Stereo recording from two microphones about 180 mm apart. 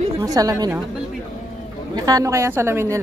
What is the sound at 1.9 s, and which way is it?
A woman's voice, 20° right (ahead or behind).